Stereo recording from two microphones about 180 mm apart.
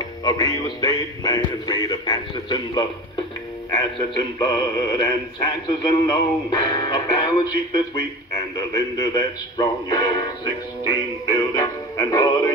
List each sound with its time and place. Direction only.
0.0 s a man's voice: 20° left (ahead or behind)
3.8 s a man's voice: 25° left (ahead or behind)